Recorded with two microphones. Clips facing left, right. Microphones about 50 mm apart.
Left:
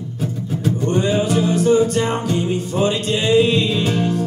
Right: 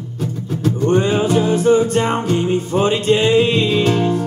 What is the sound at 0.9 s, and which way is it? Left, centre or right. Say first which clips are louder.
Music: right 3 dB; right.